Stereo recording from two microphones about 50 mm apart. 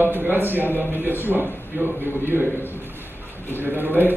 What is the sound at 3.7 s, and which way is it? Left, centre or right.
Speech, right.